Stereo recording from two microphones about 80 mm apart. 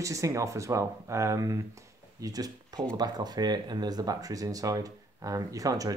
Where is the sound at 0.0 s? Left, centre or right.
Right.